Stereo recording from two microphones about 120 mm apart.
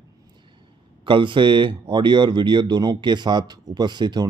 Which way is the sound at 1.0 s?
45° right (ahead or behind).